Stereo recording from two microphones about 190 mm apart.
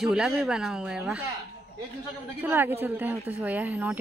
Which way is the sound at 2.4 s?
10° right (ahead or behind).